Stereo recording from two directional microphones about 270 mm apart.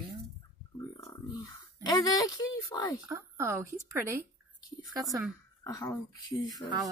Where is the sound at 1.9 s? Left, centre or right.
Centre.